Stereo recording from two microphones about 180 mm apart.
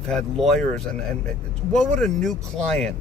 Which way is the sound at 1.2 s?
5° left (ahead or behind).